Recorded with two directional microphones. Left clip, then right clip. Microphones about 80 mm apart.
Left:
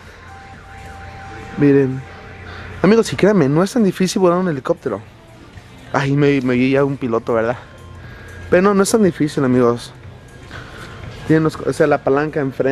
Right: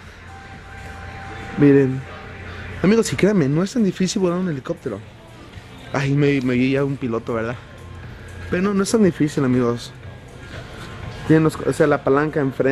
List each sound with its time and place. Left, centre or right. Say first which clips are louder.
1.6 s speech: left 1 dB; centre
8.7 s speech: left 3 dB; left
10.5 s music: left 3 dB; left
12.1 s speech: left 1 dB; centre